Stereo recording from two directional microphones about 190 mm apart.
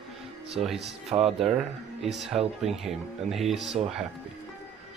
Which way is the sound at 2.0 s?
Centre (ahead or behind).